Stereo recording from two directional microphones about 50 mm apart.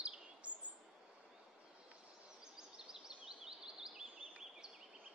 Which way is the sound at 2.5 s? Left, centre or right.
Centre.